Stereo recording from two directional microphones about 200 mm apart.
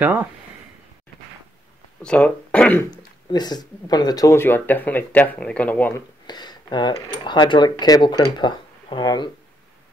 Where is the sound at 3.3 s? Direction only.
20° left (ahead or behind).